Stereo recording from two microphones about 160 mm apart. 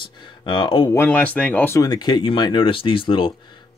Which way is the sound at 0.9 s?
10° left (ahead or behind).